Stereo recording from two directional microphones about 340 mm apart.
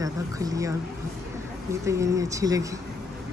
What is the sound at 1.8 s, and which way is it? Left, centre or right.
Speech, centre.